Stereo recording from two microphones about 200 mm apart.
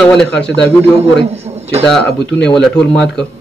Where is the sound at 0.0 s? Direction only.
5° left (ahead or behind).